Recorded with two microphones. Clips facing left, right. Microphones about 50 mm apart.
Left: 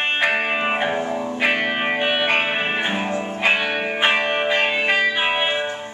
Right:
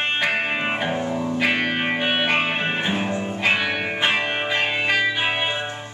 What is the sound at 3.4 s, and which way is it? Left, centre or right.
Music, centre.